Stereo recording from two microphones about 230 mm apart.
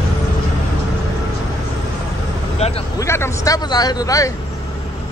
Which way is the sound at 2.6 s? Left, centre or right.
Left.